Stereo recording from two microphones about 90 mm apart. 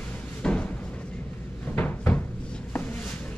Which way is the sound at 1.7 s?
20° left (ahead or behind).